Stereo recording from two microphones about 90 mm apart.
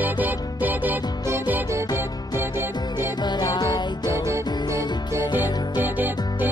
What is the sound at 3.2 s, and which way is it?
Music, 50° left (ahead or behind).